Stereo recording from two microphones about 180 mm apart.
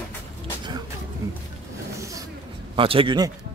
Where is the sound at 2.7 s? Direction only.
30° right (ahead or behind).